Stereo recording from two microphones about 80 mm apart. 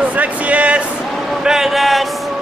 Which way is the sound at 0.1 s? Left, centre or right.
Centre.